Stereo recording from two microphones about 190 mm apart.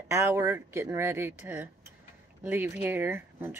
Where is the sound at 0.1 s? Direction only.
15° right (ahead or behind).